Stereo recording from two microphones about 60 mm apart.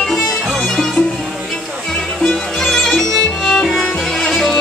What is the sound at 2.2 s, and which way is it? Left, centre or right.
Music, centre.